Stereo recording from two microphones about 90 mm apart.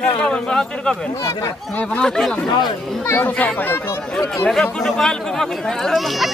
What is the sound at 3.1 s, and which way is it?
Speech, 20° left (ahead or behind).